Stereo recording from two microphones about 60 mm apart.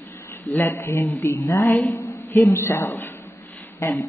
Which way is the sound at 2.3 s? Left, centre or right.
Left.